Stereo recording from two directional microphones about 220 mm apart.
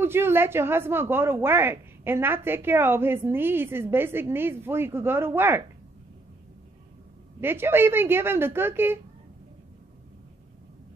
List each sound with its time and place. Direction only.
0.0 s a woman's voice: 10° right (ahead or behind)
7.3 s a woman's voice: 10° right (ahead or behind)